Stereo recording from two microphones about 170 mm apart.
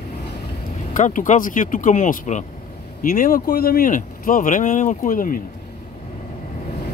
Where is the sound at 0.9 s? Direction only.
50° left (ahead or behind).